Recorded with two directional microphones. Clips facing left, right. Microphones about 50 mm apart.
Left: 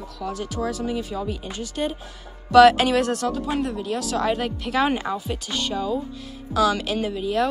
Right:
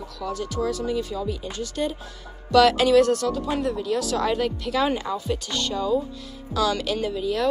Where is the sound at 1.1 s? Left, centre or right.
Left.